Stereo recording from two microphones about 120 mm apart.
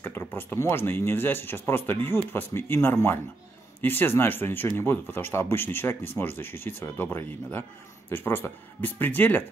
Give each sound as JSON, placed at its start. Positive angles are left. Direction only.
{"t": 0.0, "sound": "speech", "side_deg": 15}